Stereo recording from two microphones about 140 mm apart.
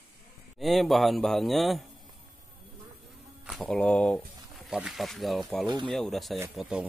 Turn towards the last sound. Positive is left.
turn(degrees=-5)  # may be behind; listen again after turning